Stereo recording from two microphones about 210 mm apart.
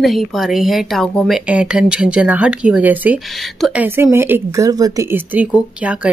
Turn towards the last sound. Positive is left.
turn(degrees=-5)  # may be behind; listen again after turning